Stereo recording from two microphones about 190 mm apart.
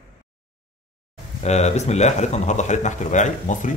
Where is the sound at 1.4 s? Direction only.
35° left (ahead or behind).